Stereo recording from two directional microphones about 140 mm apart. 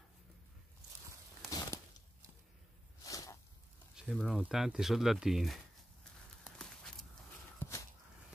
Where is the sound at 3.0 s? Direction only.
25° left (ahead or behind).